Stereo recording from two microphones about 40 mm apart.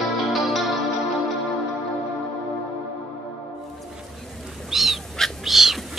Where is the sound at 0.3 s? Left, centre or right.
Centre.